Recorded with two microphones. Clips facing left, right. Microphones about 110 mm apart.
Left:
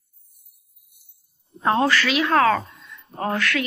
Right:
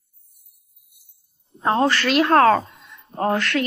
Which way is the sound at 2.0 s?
50° right (ahead or behind).